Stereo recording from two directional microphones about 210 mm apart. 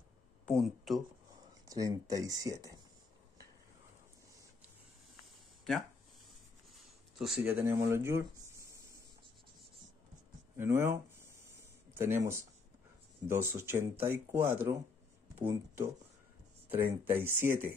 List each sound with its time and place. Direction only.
0.5 s speech: centre (ahead or behind)
1.3 s speech: 15° right (ahead or behind)
7.2 s speech: centre (ahead or behind)
10.6 s speech: 10° right (ahead or behind)
11.9 s speech: 10° right (ahead or behind)